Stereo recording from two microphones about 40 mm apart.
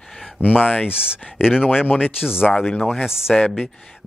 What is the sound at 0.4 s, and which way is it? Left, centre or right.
Speech, left.